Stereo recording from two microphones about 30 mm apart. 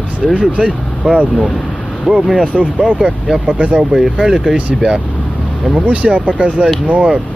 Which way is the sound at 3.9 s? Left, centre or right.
Centre.